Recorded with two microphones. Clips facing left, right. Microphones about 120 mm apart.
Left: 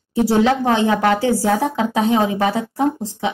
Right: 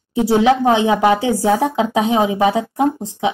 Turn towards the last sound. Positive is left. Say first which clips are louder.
# right 2 dB
turn(degrees=-15)  # may be behind; listen again after turning